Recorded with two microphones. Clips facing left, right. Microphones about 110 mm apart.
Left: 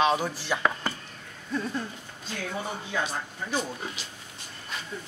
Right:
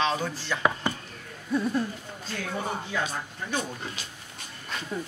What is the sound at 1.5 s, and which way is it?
Speech, 15° right (ahead or behind).